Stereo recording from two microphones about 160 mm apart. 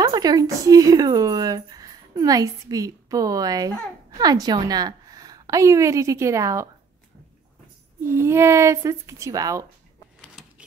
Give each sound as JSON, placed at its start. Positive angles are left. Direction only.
{"t": 0.0, "sound": "a woman's voice", "side_deg": -25}
{"t": 8.1, "sound": "speech", "side_deg": -15}